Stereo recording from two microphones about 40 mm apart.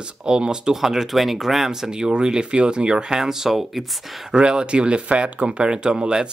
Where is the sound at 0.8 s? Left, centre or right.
Centre.